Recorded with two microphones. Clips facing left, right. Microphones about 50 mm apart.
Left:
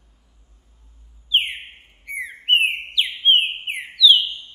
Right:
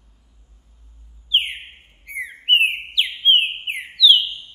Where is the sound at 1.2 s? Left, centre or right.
Centre.